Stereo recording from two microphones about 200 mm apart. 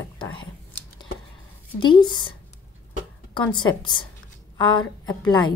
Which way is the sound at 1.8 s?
25° left (ahead or behind).